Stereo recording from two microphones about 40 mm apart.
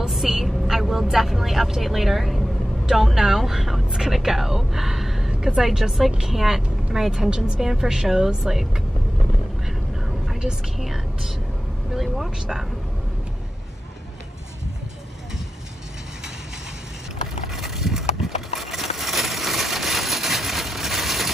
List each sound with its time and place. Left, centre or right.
0.1 s vehicle: centre
0.7 s a woman's voice: centre
7.6 s a woman's voice: centre
9.7 s a sound: centre
10.8 s speech: centre
11.9 s vehicle: centre
17.5 s a sound: centre